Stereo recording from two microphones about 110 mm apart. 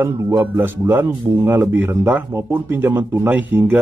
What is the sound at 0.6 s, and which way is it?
Speech, 20° right (ahead or behind).